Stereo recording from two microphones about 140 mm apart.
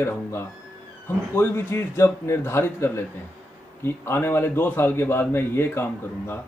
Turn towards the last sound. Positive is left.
turn(degrees=15)  # may be behind; listen again after turning